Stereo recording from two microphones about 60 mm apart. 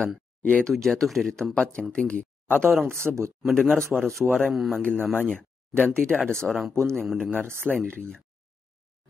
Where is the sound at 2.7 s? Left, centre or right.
Centre.